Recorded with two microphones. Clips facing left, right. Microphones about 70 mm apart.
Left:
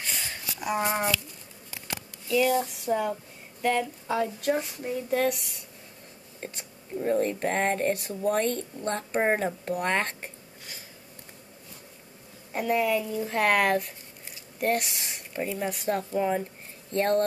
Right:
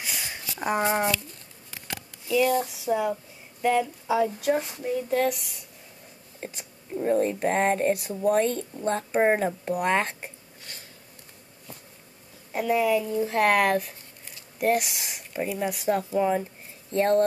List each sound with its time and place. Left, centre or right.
0.0 s a sound: centre
0.6 s speech: right
2.3 s speech: centre
12.5 s speech: centre